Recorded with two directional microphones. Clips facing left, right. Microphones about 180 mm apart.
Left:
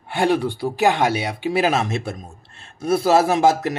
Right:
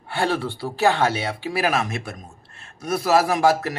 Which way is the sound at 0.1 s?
15° left (ahead or behind).